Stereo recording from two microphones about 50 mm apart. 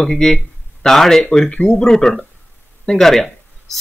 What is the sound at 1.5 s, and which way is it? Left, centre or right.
Speech, left.